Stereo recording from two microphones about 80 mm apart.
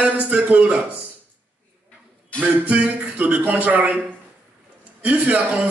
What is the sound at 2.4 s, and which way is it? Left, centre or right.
A man's voice, centre.